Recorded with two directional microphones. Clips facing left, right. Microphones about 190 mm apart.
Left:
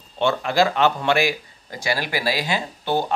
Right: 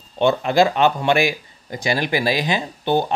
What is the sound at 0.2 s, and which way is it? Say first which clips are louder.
Speech: right 3 dB; 20° right (ahead or behind).